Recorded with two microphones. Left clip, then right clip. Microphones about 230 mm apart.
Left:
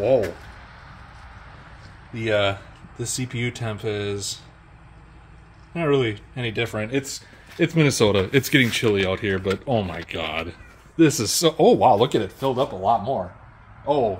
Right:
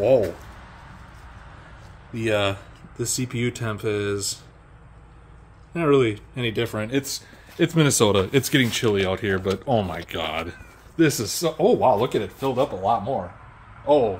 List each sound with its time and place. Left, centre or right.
0.0 s speech: centre
2.1 s speech: centre
5.7 s speech: centre
11.0 s speech: left
11.2 s speech: left
12.4 s speech: left